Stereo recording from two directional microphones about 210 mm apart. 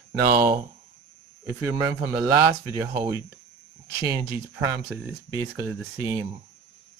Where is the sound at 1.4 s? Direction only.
15° right (ahead or behind).